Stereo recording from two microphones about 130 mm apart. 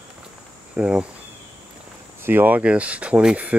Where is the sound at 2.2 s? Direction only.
15° right (ahead or behind).